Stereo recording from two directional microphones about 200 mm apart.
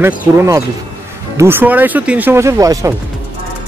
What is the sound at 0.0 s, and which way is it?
Speech, 15° right (ahead or behind).